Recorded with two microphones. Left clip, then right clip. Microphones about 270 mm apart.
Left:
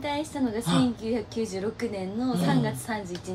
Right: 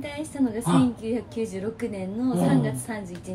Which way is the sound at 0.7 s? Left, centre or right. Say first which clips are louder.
Right 3 dB; centre.